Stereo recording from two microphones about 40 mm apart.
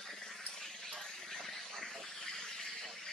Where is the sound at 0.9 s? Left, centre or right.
Centre.